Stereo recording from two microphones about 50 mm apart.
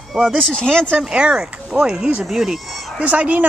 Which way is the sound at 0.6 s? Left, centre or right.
Centre.